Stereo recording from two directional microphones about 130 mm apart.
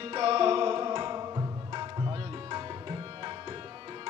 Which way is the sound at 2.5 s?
35° right (ahead or behind).